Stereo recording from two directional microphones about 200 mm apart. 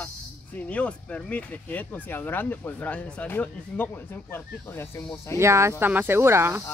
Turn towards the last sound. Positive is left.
turn(degrees=-10)  # may be behind; listen again after turning